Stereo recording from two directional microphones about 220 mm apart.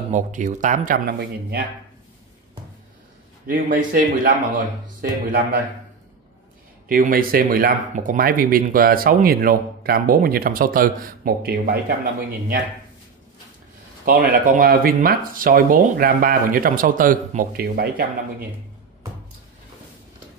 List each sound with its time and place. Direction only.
0.1 s speech: 35° right (ahead or behind)
3.4 s speech: 40° right (ahead or behind)
6.9 s speech: 40° right (ahead or behind)
14.0 s speech: 40° right (ahead or behind)